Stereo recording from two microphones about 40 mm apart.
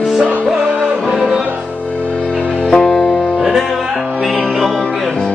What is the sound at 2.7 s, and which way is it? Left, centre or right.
Music, centre.